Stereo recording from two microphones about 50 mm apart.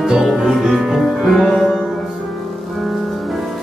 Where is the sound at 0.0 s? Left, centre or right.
Centre.